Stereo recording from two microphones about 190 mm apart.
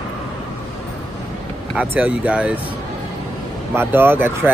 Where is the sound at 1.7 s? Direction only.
5° right (ahead or behind).